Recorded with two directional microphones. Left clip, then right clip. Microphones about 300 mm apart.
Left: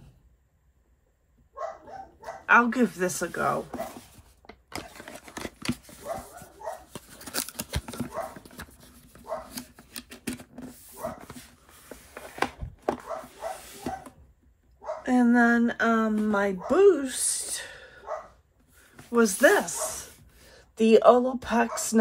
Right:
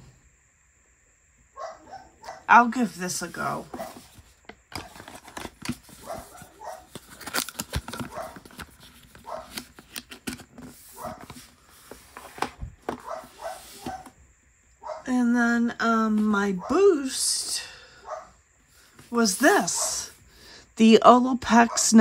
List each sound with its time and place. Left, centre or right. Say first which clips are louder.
2.4 s a woman's voice: right 3 dB; centre
4.7 s dog: even; centre
7.2 s scissors: right 5 dB; centre
7.5 s typing: right 2 dB; centre
8.5 s clip-clop: right 2 dB; centre
9.5 s shuffling cards: right 3 dB; centre
12.1 s a sound: left 2 dB; centre
15.0 s a sound: left 2 dB; centre
19.1 s speech: even; centre